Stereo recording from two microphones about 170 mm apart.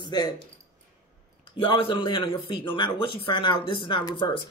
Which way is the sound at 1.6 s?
30° left (ahead or behind).